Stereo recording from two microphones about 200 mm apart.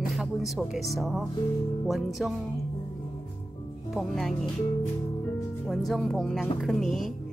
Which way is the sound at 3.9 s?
Centre (ahead or behind).